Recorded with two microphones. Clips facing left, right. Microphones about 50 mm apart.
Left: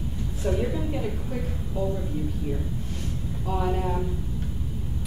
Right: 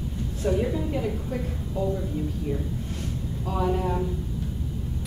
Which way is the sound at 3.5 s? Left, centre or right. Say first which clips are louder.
Even; centre.